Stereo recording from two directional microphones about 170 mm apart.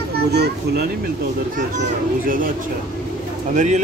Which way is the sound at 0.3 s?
75° right (ahead or behind).